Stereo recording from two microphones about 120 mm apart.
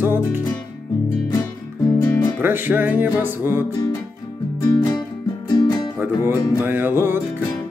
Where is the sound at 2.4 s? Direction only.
15° right (ahead or behind).